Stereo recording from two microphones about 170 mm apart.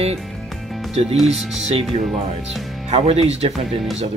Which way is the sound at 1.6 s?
40° right (ahead or behind).